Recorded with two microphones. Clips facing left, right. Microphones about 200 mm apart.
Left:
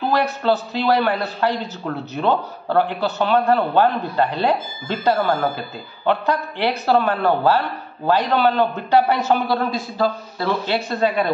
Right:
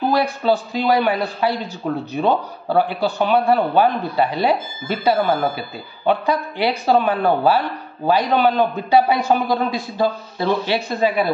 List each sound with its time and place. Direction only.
0.1 s a man's voice: 10° right (ahead or behind)